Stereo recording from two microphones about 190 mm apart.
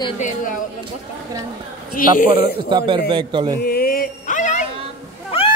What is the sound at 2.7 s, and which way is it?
Speech, 25° right (ahead or behind).